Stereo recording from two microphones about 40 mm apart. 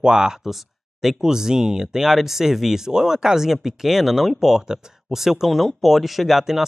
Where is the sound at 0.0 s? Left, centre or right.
Centre.